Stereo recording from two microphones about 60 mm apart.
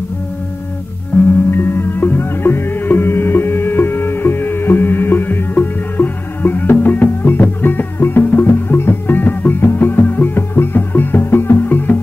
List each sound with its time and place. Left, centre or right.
1.1 s music: left
1.5 s music: left